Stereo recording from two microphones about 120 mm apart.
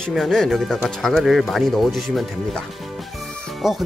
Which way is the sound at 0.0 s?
5° left (ahead or behind).